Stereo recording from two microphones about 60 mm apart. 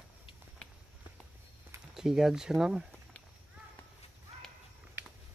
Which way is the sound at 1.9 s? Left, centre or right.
Centre.